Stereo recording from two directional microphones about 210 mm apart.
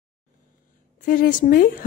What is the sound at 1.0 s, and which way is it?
Speech, 40° left (ahead or behind).